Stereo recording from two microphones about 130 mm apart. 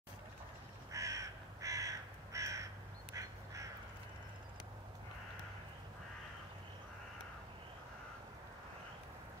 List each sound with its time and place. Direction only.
0.9 s crow: 25° right (ahead or behind)
3.2 s duck: 25° right (ahead or behind)